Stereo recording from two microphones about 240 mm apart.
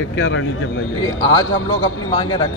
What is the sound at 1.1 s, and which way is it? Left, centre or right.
A man's voice, centre.